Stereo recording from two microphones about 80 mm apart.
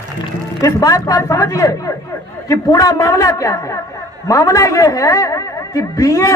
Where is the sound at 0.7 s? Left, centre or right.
Left.